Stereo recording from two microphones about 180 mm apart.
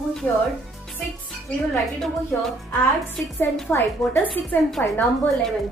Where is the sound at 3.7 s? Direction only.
10° left (ahead or behind).